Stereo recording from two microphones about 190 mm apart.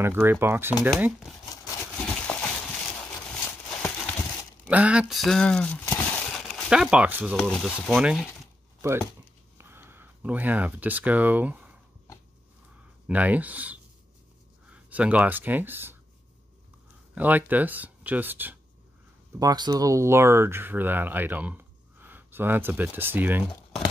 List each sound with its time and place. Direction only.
0.0 s speech: 10° right (ahead or behind)
1.5 s wood: 20° left (ahead or behind)
2.0 s a sound: 5° left (ahead or behind)
4.6 s speech: 5° right (ahead or behind)
5.9 s a sound: 10° left (ahead or behind); by 7.3 s 10° right (ahead or behind)
7.3 s speech: centre (ahead or behind)
9.6 s speech: 10° right (ahead or behind)
13.0 s speech: 10° right (ahead or behind)
17.1 s speech: 10° right (ahead or behind)
19.4 s speech: 20° right (ahead or behind)